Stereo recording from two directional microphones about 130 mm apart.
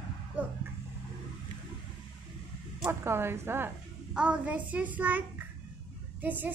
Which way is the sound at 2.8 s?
20° right (ahead or behind).